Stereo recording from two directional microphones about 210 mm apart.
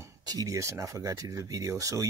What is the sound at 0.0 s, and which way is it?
Speech, 20° right (ahead or behind).